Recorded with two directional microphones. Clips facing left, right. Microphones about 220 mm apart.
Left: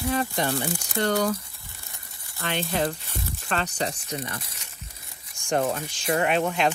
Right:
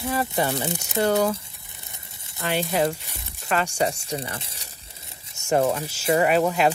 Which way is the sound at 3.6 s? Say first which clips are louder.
Right 6 dB; 10° right (ahead or behind).